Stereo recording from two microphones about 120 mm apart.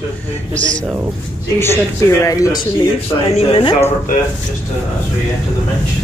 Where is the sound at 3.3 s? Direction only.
55° left (ahead or behind).